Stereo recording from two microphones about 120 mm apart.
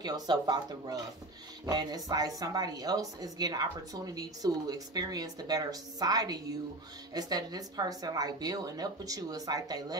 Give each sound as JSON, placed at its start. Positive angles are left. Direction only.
{"t": 0.0, "sound": "a woman's voice", "side_deg": -35}